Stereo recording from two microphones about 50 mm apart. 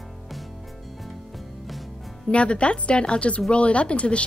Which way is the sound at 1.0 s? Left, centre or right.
Centre.